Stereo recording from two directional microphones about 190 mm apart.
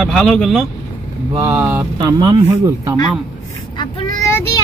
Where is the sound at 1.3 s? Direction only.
15° right (ahead or behind).